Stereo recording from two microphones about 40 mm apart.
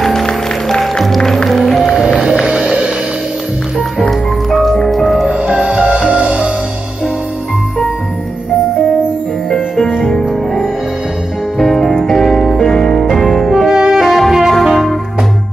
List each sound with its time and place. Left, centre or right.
0.0 s music: centre
2.4 s music: centre
4.1 s music: centre
5.3 s music: right
9.8 s music: centre
11.5 s music: centre
13.7 s music: centre
14.0 s music: centre